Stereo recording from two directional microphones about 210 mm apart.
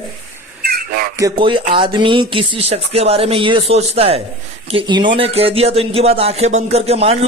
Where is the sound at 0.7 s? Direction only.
45° right (ahead or behind).